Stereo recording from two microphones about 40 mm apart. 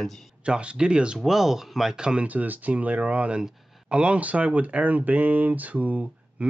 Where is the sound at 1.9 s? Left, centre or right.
Right.